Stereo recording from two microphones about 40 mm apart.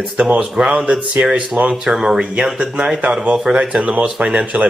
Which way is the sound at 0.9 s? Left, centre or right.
Right.